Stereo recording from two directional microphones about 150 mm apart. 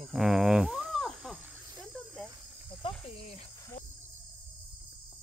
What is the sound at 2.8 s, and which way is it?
Cricket, 40° left (ahead or behind).